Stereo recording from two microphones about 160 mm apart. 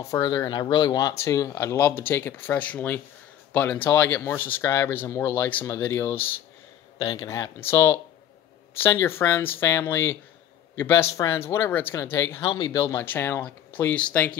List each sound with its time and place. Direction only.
0.0 s speech: 20° left (ahead or behind)
7.0 s speech: 25° left (ahead or behind); by 14.3 s 10° left (ahead or behind)